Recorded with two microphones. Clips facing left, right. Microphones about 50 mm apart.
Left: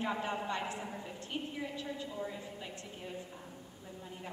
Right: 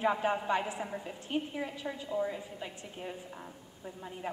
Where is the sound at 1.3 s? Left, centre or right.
Right.